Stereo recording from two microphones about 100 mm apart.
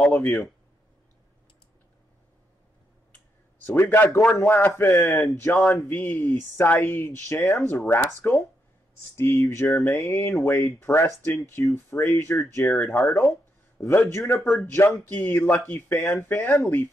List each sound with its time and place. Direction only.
0.0 s speech: 20° left (ahead or behind)
3.6 s speech: 25° left (ahead or behind)
5.6 s a man's voice: 5° left (ahead or behind)
5.9 s speech: 20° left (ahead or behind)